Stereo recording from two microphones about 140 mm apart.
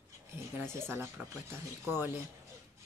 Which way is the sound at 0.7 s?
15° right (ahead or behind).